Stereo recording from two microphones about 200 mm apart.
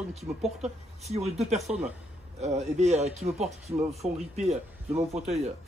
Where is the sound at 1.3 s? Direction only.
30° right (ahead or behind).